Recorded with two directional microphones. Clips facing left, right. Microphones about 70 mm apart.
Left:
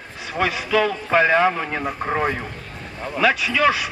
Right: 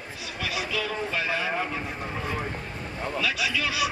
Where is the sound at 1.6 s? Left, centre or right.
Left.